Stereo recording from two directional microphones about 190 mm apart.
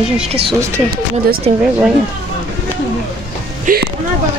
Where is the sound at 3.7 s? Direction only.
45° right (ahead or behind).